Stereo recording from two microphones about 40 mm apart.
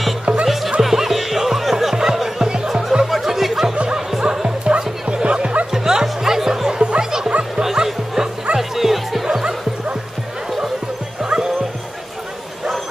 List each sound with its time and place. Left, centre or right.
0.2 s music: right
0.7 s music: centre
2.4 s music: right
3.1 s music: centre
4.2 s music: right
5.7 s music: centre
6.8 s music: right
7.1 s music: centre
9.3 s music: centre
11.2 s music: right